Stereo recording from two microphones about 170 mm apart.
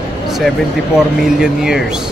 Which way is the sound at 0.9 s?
5° right (ahead or behind).